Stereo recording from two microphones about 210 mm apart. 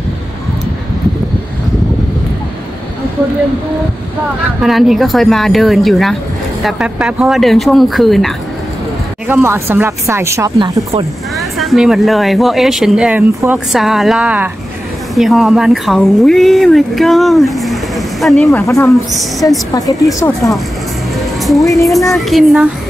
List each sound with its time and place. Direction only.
4.6 s speech: centre (ahead or behind)
9.3 s speech: 10° right (ahead or behind)
11.3 s speech: centre (ahead or behind)
18.6 s a woman's voice: 15° left (ahead or behind)
21.4 s music: centre (ahead or behind)
21.8 s speech: centre (ahead or behind)